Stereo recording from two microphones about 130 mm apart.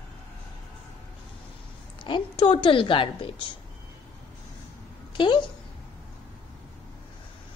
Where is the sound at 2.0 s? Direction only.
40° left (ahead or behind).